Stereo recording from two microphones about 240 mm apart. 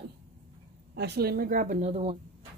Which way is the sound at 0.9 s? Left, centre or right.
Right.